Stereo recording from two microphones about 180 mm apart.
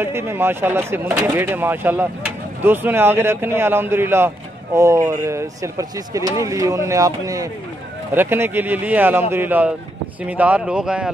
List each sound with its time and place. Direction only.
0.0 s speech: 15° right (ahead or behind)